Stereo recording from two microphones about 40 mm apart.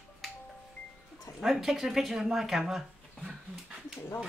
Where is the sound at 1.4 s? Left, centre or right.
Centre.